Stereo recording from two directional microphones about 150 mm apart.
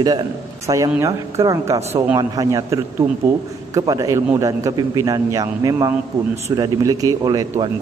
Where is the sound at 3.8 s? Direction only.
25° right (ahead or behind).